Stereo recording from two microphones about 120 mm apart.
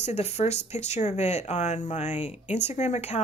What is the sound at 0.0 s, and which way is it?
Speech, 65° left (ahead or behind).